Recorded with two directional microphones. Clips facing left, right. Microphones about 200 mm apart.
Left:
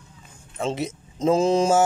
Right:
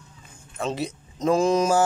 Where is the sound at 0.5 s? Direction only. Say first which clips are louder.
Left 1 dB; 25° left (ahead or behind).